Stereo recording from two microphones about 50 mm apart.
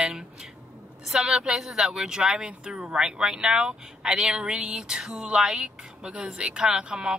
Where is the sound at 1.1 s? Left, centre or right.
Centre.